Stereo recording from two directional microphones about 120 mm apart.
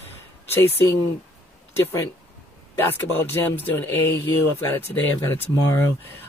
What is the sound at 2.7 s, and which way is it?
Speech, 20° left (ahead or behind).